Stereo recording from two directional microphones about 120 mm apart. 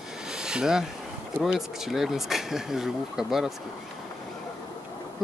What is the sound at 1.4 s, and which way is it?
Speech, 5° right (ahead or behind).